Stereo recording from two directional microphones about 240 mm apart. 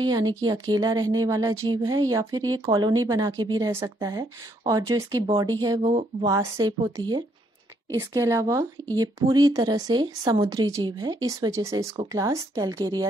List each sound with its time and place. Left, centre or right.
0.0 s speech: centre
5.8 s speech: right
6.2 s speech: centre